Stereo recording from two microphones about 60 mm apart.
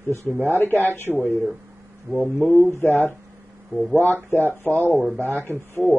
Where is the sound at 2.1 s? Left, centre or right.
Centre.